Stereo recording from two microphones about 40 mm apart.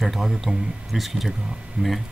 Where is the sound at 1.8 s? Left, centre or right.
Right.